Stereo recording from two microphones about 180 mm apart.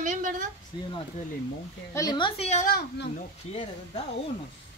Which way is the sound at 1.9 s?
20° left (ahead or behind).